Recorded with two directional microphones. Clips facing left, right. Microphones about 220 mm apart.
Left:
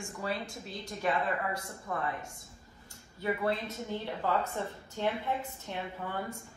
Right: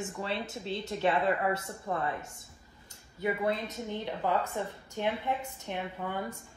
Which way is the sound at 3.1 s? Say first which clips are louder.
Right 1 dB; 20° right (ahead or behind).